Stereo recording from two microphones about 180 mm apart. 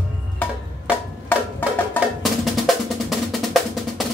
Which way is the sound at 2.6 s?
Centre (ahead or behind).